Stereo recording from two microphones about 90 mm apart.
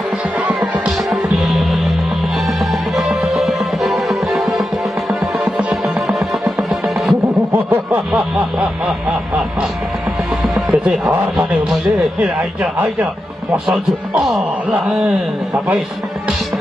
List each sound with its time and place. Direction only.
0.5 s music: 15° right (ahead or behind)
1.3 s music: centre (ahead or behind)
5.4 s music: 15° right (ahead or behind)
6.0 s music: 5° right (ahead or behind)
7.5 s a sound: 25° right (ahead or behind)
8.1 s a sound: 5° right (ahead or behind)
10.4 s music: 5° right (ahead or behind)
14.2 s speech: 5° right (ahead or behind)